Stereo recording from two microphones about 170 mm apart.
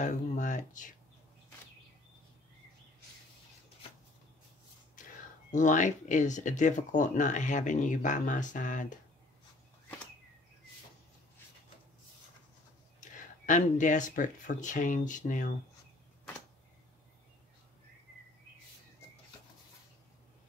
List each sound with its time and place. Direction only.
0.0 s speech: 45° left (ahead or behind)
5.5 s speech: 45° left (ahead or behind)
13.0 s speech: 45° left (ahead or behind)